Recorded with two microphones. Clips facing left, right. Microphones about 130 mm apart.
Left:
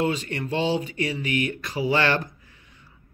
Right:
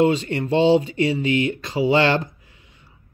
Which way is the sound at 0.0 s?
25° right (ahead or behind).